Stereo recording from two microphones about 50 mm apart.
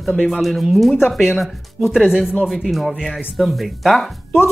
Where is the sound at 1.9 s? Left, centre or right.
Centre.